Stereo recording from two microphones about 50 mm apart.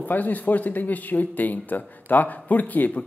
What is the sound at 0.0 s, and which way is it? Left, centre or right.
Speech, left.